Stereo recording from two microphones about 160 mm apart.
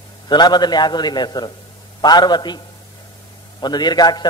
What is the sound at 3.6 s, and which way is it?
Speech, 25° left (ahead or behind).